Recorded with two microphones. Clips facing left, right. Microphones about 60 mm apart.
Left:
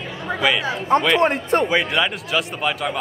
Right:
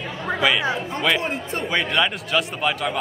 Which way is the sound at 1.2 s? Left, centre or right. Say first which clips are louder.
Left 8 dB; left.